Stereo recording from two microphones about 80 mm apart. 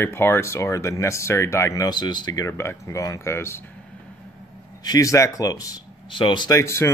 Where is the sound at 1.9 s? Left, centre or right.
Left.